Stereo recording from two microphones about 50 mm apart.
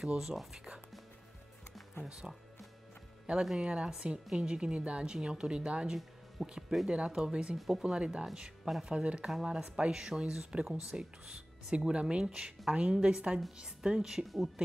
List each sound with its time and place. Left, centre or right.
0.2 s speech: centre
2.0 s a woman's voice: centre
3.5 s a woman's voice: centre
6.4 s speech: centre
6.9 s a woman's voice: centre
7.5 s speech: centre
7.8 s a woman's voice: centre